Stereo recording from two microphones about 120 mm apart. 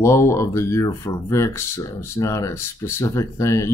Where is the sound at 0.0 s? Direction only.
25° left (ahead or behind).